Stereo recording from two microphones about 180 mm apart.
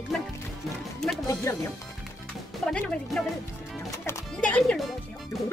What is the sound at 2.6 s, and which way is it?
Speech, 5° left (ahead or behind).